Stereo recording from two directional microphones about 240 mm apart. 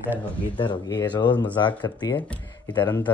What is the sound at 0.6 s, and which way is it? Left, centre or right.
Speech, centre.